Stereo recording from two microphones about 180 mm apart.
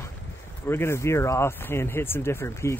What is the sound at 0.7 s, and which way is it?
Speech, 15° left (ahead or behind).